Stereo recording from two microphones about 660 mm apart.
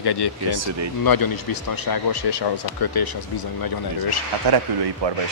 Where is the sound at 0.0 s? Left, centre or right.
Left.